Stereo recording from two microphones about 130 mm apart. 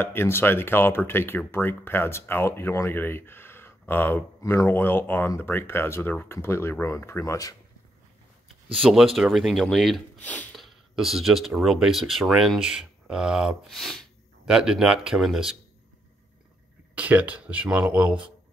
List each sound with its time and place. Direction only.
0.0 s speech: 20° left (ahead or behind)
8.7 s speech: centre (ahead or behind)
10.2 s speech: 10° left (ahead or behind)
10.5 s speech: centre (ahead or behind)
16.9 s speech: 10° right (ahead or behind)